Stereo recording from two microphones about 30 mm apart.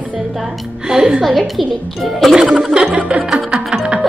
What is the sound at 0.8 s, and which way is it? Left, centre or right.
Speech, right.